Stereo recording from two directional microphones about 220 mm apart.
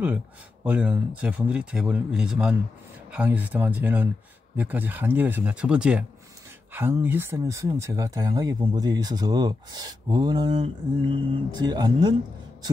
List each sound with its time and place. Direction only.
0.7 s speech: 5° right (ahead or behind)